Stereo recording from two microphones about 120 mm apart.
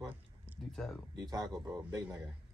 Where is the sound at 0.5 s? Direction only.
15° right (ahead or behind).